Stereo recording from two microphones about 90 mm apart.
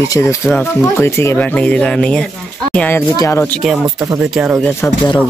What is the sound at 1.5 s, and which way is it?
Speech, 10° left (ahead or behind).